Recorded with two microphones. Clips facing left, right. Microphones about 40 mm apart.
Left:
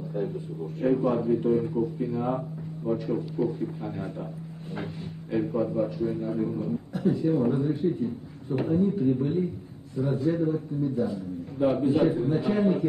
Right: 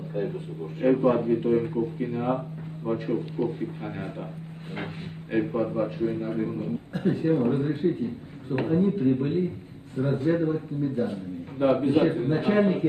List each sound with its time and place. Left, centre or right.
0.1 s a man's voice: right
5.3 s a man's voice: right